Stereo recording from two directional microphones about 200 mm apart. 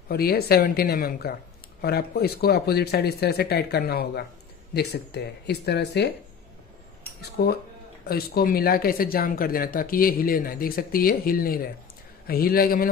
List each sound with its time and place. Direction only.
0.1 s speech: 50° left (ahead or behind)
7.2 s speech: 50° left (ahead or behind)